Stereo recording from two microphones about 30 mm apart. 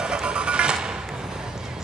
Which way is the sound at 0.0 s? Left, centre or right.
Right.